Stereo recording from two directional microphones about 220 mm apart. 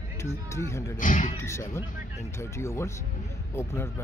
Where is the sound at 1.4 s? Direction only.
10° left (ahead or behind).